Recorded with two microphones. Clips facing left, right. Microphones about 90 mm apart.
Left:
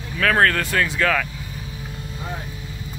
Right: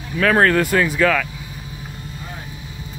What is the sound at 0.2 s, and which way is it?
Speech, 5° right (ahead or behind).